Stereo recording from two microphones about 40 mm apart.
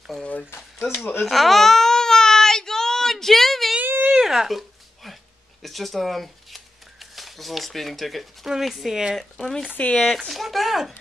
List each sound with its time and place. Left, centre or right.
1.2 s baby cry: centre
3.8 s whimper: right
4.3 s a sound: centre
8.5 s speech: centre
9.8 s speech: left
10.0 s speech: centre